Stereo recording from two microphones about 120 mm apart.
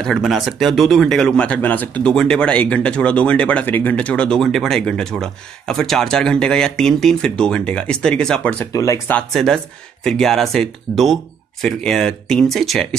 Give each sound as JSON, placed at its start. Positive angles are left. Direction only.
{"t": 0.0, "sound": "speech", "side_deg": 0}
{"t": 8.7, "sound": "speech", "side_deg": 25}
{"t": 9.1, "sound": "speech", "side_deg": 5}